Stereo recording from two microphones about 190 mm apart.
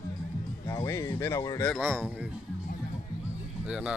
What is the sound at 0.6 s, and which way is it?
Speech, 15° left (ahead or behind).